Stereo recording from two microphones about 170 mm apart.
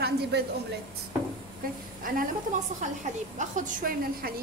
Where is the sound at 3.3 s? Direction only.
55° right (ahead or behind).